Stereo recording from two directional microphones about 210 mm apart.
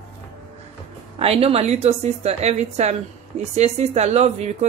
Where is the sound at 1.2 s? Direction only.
30° right (ahead or behind).